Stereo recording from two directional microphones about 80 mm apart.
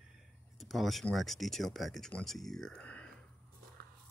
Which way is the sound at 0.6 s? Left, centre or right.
Centre.